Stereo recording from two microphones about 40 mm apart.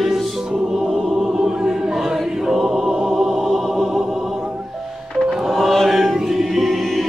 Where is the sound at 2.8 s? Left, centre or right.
Centre.